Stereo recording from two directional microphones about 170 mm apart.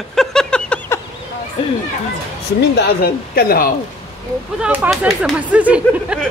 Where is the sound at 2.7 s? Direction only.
65° left (ahead or behind).